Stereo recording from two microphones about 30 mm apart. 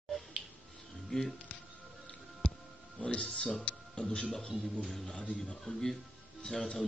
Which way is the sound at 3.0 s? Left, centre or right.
Left.